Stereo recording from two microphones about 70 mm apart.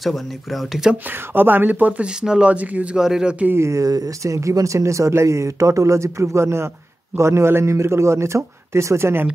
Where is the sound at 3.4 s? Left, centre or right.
Right.